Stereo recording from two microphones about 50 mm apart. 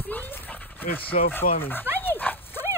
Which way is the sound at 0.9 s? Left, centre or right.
Left.